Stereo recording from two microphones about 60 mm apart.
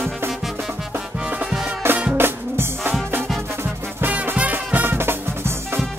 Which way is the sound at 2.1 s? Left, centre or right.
Right.